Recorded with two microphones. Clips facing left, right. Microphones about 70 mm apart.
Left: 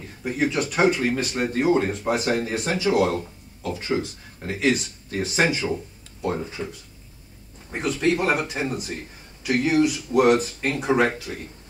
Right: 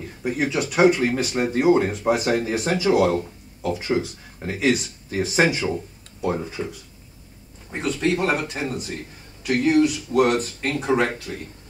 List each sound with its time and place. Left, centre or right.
0.2 s speech: centre
7.7 s speech: centre